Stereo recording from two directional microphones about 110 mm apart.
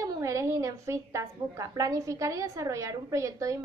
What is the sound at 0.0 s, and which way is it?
A woman's voice, 30° right (ahead or behind).